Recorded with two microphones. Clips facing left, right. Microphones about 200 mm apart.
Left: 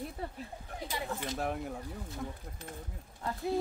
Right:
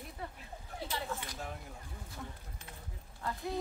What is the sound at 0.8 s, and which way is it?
Speech, 15° left (ahead or behind).